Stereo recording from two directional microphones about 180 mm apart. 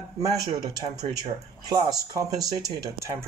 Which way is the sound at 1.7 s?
20° right (ahead or behind).